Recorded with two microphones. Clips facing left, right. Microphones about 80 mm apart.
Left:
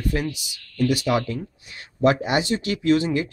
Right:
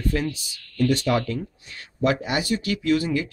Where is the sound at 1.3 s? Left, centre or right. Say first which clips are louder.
Right 1 dB; left.